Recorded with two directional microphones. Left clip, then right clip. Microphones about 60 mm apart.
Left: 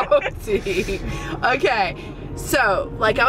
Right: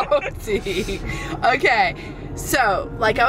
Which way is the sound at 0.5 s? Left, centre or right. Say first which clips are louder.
Left 1 dB; centre.